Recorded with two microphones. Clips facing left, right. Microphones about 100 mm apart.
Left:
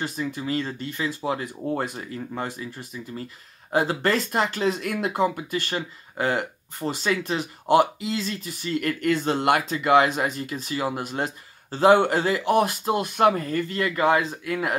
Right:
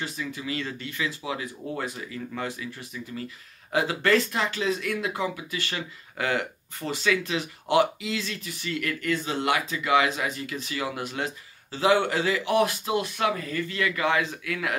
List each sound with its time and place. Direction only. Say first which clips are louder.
0.0 s speech: left 4 dB; 45° left (ahead or behind)
3.7 s speech: left 1 dB; 35° left (ahead or behind)
6.9 s speech: left 1 dB; 40° left (ahead or behind)
9.1 s speech: left 4 dB; 55° left (ahead or behind)
10.5 s speech: left 4 dB; 30° left (ahead or behind)
11.2 s speech: left 1 dB; 45° left (ahead or behind)